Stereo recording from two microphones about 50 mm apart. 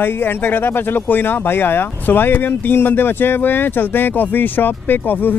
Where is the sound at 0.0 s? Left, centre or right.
Left.